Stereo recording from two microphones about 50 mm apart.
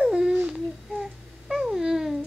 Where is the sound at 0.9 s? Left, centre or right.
Centre.